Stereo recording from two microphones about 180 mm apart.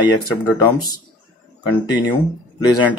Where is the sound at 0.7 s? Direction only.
25° left (ahead or behind).